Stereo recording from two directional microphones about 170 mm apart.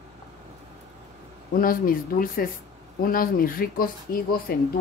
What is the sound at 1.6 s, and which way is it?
A woman's voice, 55° left (ahead or behind).